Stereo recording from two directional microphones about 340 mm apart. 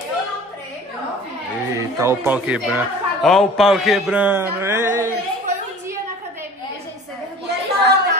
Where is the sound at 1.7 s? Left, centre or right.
Centre.